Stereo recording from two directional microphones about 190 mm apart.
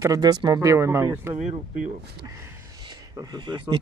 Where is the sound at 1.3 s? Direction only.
35° right (ahead or behind).